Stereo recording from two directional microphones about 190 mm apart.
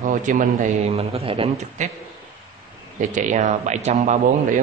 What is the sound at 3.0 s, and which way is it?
A man's voice, 40° right (ahead or behind).